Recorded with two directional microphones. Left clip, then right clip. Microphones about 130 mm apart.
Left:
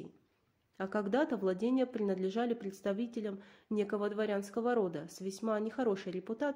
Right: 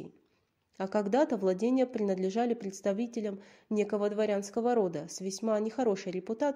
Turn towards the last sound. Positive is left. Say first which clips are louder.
# right 5 dB
turn(degrees=-25)  # may be behind; listen again after turning